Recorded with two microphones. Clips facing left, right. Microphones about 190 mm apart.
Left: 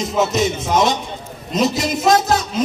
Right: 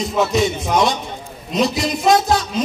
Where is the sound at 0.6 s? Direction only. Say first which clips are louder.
Left 1 dB; 20° left (ahead or behind).